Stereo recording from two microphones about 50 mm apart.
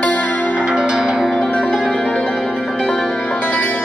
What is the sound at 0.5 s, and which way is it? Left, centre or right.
Music, right.